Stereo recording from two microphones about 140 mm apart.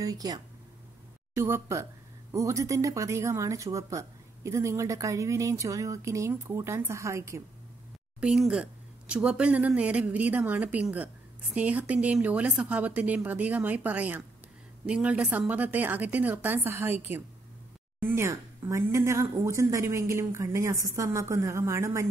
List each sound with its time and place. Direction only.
0.0 s speech: 25° right (ahead or behind)
8.2 s a woman's voice: 5° right (ahead or behind)
18.0 s speech: 20° right (ahead or behind)